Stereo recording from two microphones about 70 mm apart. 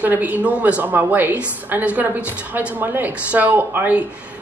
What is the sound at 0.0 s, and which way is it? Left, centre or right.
Speech, right.